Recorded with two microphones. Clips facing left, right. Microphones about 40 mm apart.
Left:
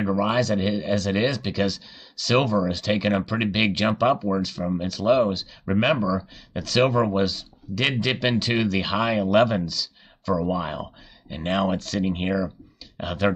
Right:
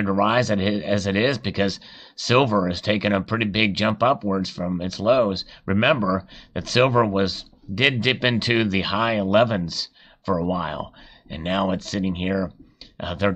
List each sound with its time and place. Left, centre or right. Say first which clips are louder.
0.0 s speech: right 3 dB; right
2.2 s speech: right 2 dB; centre; by 8.6 s right
8.9 s speech: right 1 dB; centre